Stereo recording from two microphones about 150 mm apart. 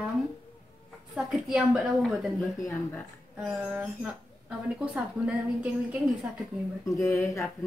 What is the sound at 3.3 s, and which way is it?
A woman's voice, 5° right (ahead or behind).